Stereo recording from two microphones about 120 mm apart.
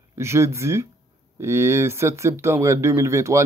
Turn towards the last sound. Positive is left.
turn(degrees=-25)  # may be behind; listen again after turning